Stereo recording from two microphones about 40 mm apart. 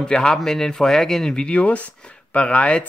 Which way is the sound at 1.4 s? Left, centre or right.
Left.